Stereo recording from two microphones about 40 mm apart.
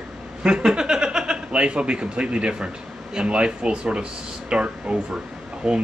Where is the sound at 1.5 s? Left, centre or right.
Right.